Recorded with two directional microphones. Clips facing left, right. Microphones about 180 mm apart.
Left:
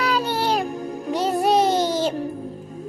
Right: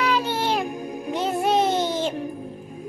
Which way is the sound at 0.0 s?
40° left (ahead or behind).